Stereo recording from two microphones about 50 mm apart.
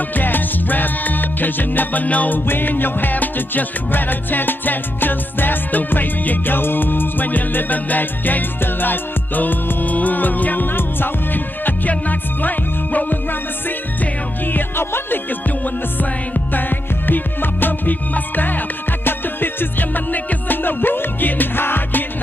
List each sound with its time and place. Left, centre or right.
0.1 s music: left
16.5 s music: left